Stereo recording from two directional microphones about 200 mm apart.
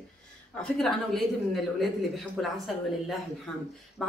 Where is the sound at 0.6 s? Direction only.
Centre (ahead or behind).